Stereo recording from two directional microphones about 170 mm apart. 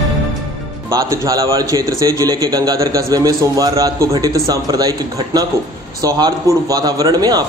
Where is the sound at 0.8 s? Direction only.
20° right (ahead or behind).